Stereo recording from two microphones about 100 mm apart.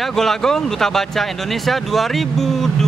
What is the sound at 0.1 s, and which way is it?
Speech, 5° left (ahead or behind).